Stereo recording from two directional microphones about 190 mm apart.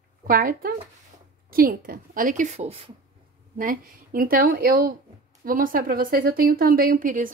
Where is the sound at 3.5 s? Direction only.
45° right (ahead or behind).